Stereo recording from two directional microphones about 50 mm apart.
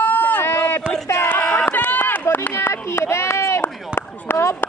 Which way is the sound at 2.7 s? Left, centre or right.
Left.